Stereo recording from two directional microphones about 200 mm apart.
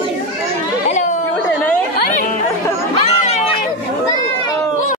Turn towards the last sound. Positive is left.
turn(degrees=30)  # may be behind; listen again after turning